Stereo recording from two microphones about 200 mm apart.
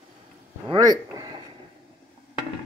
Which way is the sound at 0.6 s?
20° right (ahead or behind).